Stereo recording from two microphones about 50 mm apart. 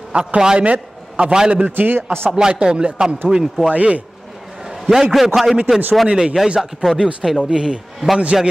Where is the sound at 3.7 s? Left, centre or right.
Right.